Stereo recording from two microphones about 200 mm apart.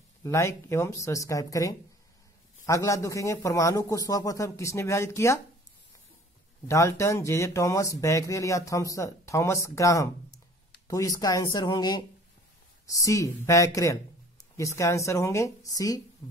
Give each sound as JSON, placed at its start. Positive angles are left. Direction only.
{"t": 0.2, "sound": "speech", "side_deg": 15}
{"t": 6.7, "sound": "speech", "side_deg": 15}
{"t": 16.2, "sound": "music", "side_deg": 15}